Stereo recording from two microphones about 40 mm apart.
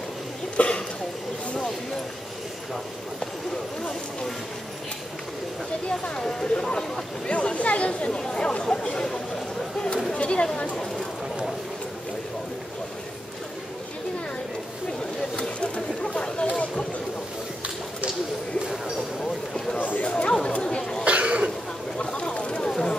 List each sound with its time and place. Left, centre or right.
0.6 s cough: left
5.9 s speech: left
8.2 s speech: centre
10.1 s a sound: left
15.6 s a sound: left
20.0 s chatter: left
21.0 s cough: right
21.9 s a sound: left
22.7 s run: centre